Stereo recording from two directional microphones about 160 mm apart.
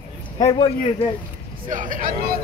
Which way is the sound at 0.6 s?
35° left (ahead or behind).